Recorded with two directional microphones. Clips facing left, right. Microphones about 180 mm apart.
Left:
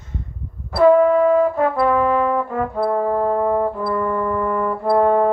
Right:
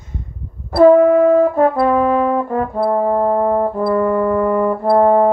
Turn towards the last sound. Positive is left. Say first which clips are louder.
# right 4 dB
turn(degrees=-40)  # may be behind; listen again after turning